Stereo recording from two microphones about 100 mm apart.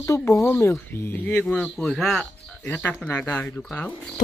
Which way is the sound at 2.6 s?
20° left (ahead or behind).